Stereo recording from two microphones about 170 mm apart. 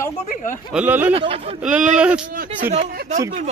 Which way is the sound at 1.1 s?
35° right (ahead or behind).